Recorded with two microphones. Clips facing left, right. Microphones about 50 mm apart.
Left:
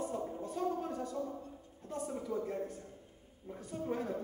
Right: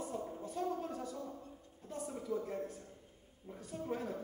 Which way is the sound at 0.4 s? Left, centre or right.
Centre.